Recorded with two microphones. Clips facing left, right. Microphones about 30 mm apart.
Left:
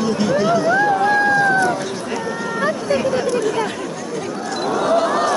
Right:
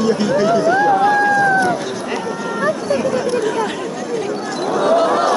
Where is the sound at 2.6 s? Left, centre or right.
Centre.